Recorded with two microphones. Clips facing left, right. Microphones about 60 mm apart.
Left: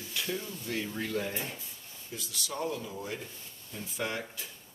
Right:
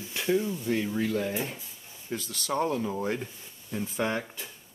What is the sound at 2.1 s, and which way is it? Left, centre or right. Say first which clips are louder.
Speech: right 8 dB; right.